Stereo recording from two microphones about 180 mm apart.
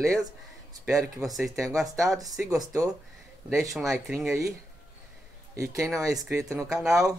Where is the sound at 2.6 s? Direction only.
20° right (ahead or behind).